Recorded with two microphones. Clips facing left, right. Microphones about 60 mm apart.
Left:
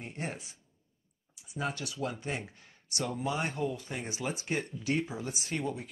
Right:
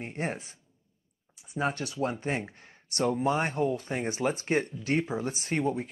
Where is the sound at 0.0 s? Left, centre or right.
Right.